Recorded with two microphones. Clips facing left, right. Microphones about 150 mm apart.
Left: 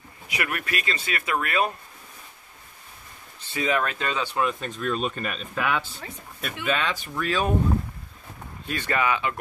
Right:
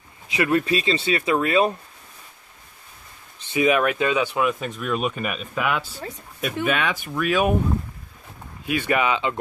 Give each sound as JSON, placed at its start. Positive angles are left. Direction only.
{"t": 0.3, "sound": "speech", "side_deg": -25}
{"t": 3.3, "sound": "speech", "side_deg": -20}
{"t": 8.6, "sound": "speech", "side_deg": -15}